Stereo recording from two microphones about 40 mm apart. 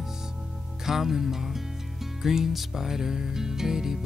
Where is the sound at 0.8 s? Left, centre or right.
Centre.